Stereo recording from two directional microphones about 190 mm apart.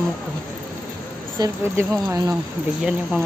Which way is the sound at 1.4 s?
20° right (ahead or behind).